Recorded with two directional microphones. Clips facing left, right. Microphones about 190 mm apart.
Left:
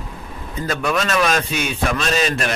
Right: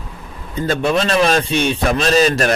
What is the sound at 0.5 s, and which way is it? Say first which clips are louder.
A man's voice: right 4 dB; 30° right (ahead or behind).